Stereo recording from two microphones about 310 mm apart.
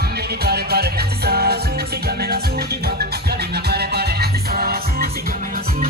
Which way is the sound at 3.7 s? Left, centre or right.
Right.